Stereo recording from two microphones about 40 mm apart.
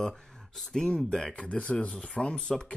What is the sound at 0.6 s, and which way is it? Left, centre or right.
Speech, centre.